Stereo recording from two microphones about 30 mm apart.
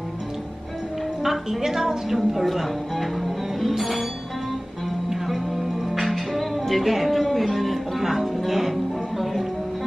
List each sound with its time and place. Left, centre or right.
1.2 s a woman's voice: centre
5.9 s music: centre
6.9 s speech: centre
8.0 s music: centre